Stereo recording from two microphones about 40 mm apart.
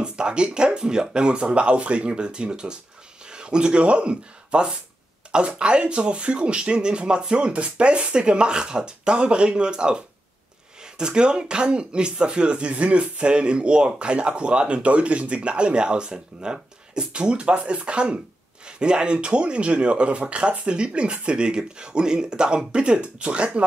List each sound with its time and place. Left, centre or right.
0.0 s speech: right